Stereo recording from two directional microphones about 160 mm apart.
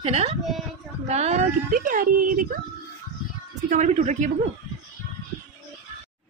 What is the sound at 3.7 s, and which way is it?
Speech, 50° right (ahead or behind).